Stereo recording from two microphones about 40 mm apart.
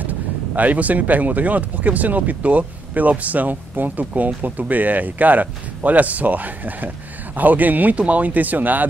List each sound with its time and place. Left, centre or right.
0.6 s speech: right